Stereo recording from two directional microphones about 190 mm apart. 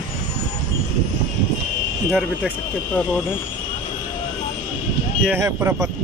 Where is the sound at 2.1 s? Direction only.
Centre (ahead or behind).